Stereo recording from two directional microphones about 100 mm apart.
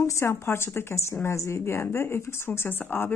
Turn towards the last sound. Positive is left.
turn(degrees=20)  # may be behind; listen again after turning